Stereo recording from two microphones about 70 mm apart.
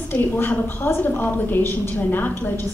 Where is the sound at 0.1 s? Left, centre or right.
Left.